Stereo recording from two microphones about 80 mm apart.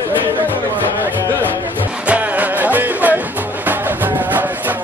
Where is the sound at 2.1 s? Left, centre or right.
Centre.